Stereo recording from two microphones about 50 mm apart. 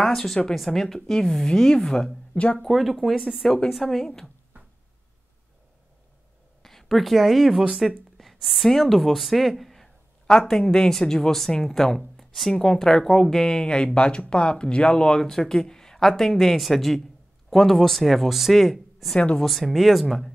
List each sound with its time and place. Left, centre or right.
0.0 s speech: centre
2.3 s speech: left
2.6 s speech: centre
6.6 s speech: centre
12.2 s a sound: centre
12.5 s speech: centre
19.1 s speech: centre
19.4 s speech: centre